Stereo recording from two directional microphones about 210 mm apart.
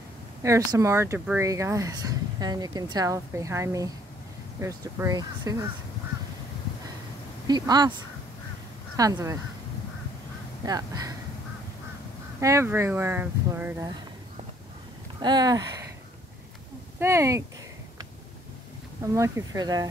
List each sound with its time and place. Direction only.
0.4 s speech: 15° right (ahead or behind)
7.4 s speech: 20° right (ahead or behind)
8.9 s speech: 15° right (ahead or behind)
10.6 s speech: 15° right (ahead or behind)
12.4 s speech: 15° right (ahead or behind)
15.1 s speech: 20° right (ahead or behind)
17.0 s speech: 15° right (ahead or behind)
19.1 s speech: 15° right (ahead or behind)